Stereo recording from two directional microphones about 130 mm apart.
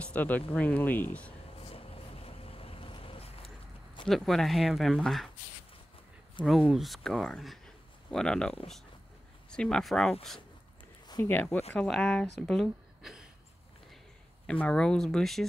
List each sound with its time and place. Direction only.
0.0 s speech: 15° left (ahead or behind)
1.6 s vehicle: 50° left (ahead or behind)
4.1 s speech: centre (ahead or behind)
6.4 s speech: centre (ahead or behind)
11.2 s speech: 15° left (ahead or behind)
12.4 s a sound: centre (ahead or behind)
14.4 s speech: 10° left (ahead or behind)